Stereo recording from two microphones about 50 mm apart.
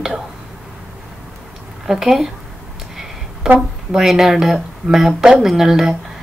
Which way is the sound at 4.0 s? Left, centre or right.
Centre.